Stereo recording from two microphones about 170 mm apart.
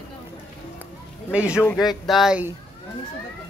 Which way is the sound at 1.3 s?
5° right (ahead or behind).